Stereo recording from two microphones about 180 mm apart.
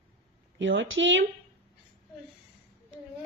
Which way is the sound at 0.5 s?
90° right.